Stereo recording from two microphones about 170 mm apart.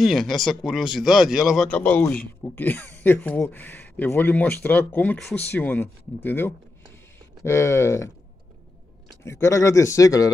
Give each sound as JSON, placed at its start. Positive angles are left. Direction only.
{"t": 0.0, "sound": "speech", "side_deg": 0}
{"t": 1.7, "sound": "speech", "side_deg": 10}
{"t": 9.2, "sound": "speech", "side_deg": 15}